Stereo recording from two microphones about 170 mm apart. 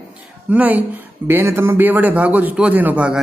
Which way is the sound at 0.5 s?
10° right (ahead or behind).